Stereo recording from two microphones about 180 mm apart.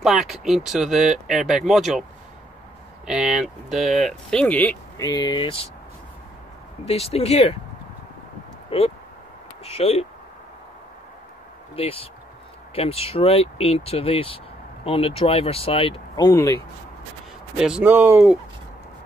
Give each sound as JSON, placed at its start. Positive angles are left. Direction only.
{"t": 0.0, "sound": "speech", "side_deg": 0}
{"t": 3.1, "sound": "speech", "side_deg": -5}
{"t": 5.0, "sound": "speech", "side_deg": 20}
{"t": 6.9, "sound": "speech", "side_deg": 35}
{"t": 8.6, "sound": "speech", "side_deg": 35}
{"t": 11.7, "sound": "speech", "side_deg": 30}
{"t": 16.3, "sound": "speech", "side_deg": 15}
{"t": 17.6, "sound": "speech", "side_deg": -5}